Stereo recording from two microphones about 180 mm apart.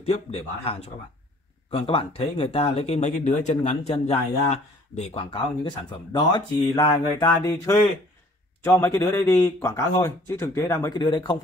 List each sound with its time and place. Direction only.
0.0 s a man's voice: 30° left (ahead or behind)
5.2 s speech: 25° left (ahead or behind)